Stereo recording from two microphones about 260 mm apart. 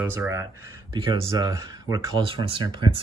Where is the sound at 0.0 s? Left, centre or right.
Centre.